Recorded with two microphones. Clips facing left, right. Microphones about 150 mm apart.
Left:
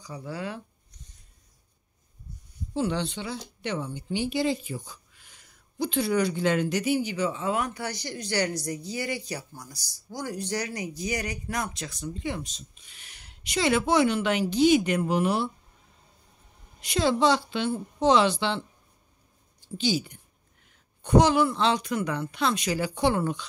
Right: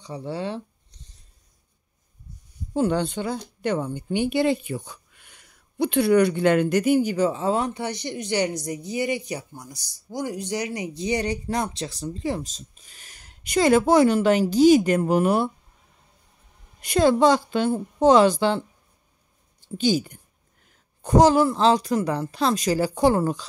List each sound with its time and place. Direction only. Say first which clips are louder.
0.0 s speech: right 5 dB; 30° right (ahead or behind)
2.7 s speech: right 5 dB; 50° right (ahead or behind)
16.8 s speech: right 5 dB; 50° right (ahead or behind)
19.8 s speech: right 5 dB; 45° right (ahead or behind)